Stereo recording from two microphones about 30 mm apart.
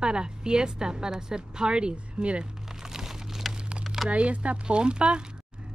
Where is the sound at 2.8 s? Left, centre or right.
Centre.